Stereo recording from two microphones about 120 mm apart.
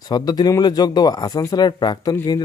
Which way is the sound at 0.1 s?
35° left (ahead or behind).